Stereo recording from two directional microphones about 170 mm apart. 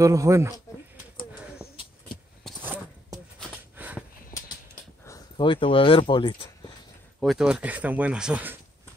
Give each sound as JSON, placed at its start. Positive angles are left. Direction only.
{"t": 0.0, "sound": "speech", "side_deg": -20}
{"t": 2.6, "sound": "zipper", "side_deg": -10}
{"t": 3.7, "sound": "a sound", "side_deg": -10}
{"t": 5.4, "sound": "speech", "side_deg": 30}
{"t": 7.2, "sound": "speech", "side_deg": 0}